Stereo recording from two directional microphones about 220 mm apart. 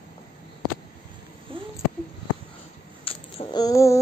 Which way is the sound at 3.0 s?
25° left (ahead or behind).